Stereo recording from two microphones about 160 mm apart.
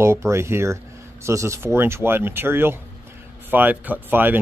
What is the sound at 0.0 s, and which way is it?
Speech, 15° right (ahead or behind).